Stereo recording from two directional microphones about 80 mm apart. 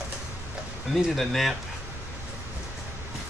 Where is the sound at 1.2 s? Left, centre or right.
Centre.